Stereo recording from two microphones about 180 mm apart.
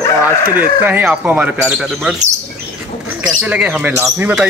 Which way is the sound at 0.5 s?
10° right (ahead or behind).